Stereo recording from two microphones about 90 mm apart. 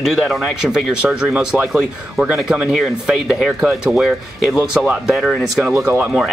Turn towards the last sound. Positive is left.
turn(degrees=-5)  # may be behind; listen again after turning